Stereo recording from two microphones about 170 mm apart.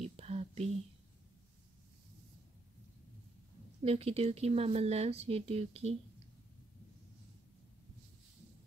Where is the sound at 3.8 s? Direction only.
35° right (ahead or behind).